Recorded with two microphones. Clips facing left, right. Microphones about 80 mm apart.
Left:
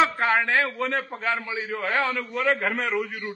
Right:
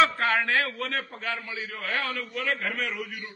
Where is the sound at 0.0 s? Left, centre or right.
Left.